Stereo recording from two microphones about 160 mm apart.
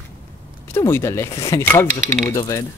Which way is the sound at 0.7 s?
15° left (ahead or behind).